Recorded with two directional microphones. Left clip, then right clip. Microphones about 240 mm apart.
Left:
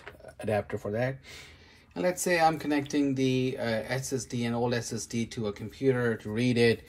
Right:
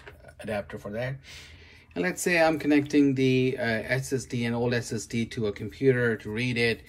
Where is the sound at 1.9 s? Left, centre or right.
Centre.